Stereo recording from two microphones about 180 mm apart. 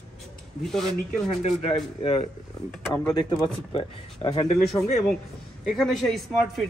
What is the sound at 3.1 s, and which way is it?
Speech, 25° left (ahead or behind).